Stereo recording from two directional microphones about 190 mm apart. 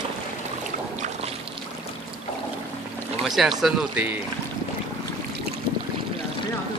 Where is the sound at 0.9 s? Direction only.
40° right (ahead or behind).